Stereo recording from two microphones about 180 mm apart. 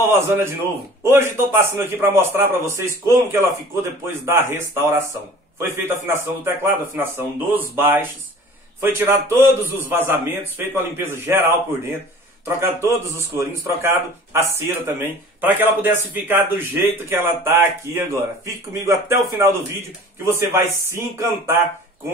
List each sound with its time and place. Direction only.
0.0 s a man's voice: 15° right (ahead or behind)
4.0 s a man's voice: 15° right (ahead or behind)